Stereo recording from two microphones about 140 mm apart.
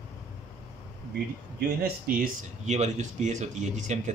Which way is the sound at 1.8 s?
90° right.